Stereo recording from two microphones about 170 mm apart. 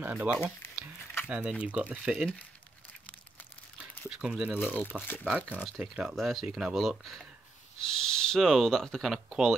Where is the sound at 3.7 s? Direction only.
5° right (ahead or behind).